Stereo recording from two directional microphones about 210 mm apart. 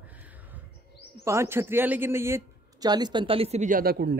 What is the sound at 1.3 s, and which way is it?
Speech, 10° right (ahead or behind).